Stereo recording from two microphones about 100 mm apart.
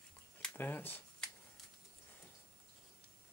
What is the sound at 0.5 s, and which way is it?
Speech, 20° left (ahead or behind).